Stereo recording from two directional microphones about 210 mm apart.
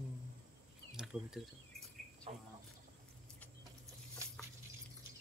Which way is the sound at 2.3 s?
30° right (ahead or behind).